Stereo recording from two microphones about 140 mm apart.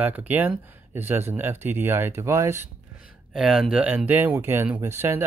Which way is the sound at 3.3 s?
5° right (ahead or behind).